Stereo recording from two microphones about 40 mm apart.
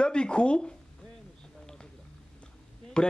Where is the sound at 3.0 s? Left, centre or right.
Left.